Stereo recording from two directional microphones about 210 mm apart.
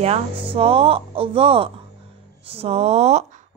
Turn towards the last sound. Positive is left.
turn(degrees=-30)  # may be behind; listen again after turning